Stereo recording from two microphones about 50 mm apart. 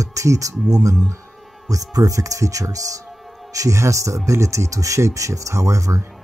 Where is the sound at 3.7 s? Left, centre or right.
Right.